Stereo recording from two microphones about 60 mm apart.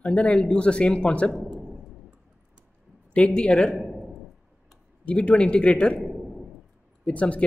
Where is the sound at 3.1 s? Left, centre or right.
Centre.